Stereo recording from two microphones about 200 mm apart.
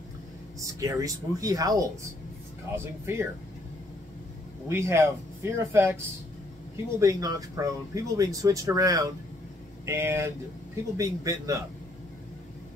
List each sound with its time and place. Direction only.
0.7 s speech: 15° right (ahead or behind)
4.6 s speech: 15° right (ahead or behind)
7.0 s speech: 15° right (ahead or behind)